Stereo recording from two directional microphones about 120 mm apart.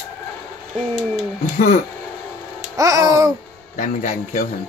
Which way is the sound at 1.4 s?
90° left.